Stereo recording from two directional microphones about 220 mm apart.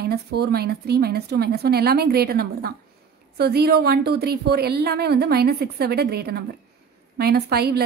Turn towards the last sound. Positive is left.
turn(degrees=-45)  # may be behind; listen again after turning